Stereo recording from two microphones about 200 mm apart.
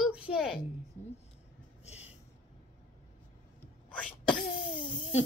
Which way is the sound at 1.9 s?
30° left (ahead or behind).